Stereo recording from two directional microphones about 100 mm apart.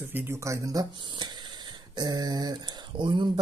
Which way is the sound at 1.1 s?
50° right (ahead or behind).